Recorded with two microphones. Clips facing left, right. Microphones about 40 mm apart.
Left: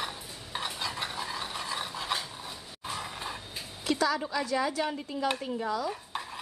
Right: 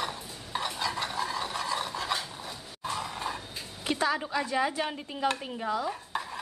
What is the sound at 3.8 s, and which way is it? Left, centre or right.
A woman's voice, right.